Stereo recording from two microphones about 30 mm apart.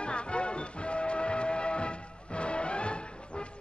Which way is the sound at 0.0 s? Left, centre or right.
Left.